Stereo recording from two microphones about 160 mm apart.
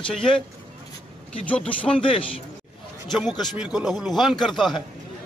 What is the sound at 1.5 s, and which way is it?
Speech, 10° left (ahead or behind).